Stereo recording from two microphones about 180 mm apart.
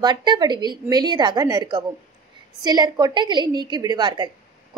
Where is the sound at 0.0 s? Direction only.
25° right (ahead or behind).